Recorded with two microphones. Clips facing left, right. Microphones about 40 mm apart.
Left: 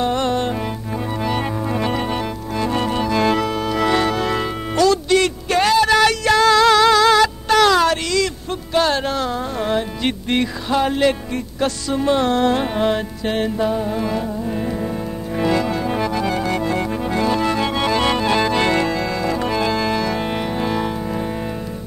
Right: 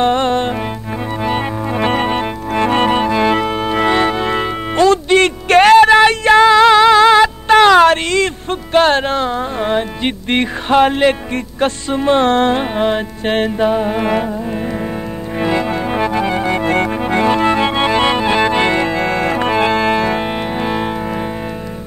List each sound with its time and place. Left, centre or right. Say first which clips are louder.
0.0 s music: right 5 dB; right
1.8 s organ: right 8 dB; right
3.1 s organ: right 3 dB; right
5.9 s music: right 6 dB; right
10.3 s music: right 7 dB; right
12.5 s music: right 3 dB; right
13.2 s music: right 7 dB; right
14.5 s music: right 2 dB; right
16.6 s music: right 6 dB; right
16.9 s organ: right 5 dB; right
18.9 s organ: right 5 dB; right